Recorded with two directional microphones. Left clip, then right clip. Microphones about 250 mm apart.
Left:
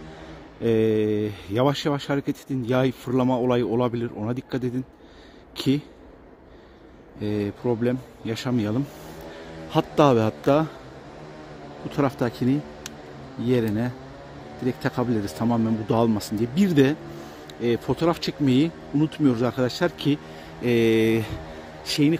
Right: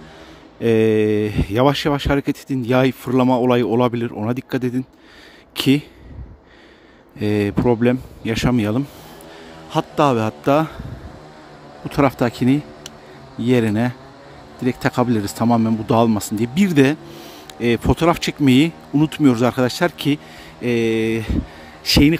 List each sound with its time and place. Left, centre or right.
0.6 s speech: centre
7.2 s speech: centre
11.9 s speech: centre
21.8 s speech: right